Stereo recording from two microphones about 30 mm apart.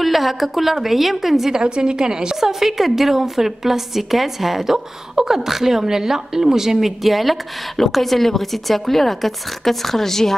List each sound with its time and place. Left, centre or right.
0.0 s a woman's voice: centre
1.5 s a woman's voice: right
2.4 s a woman's voice: centre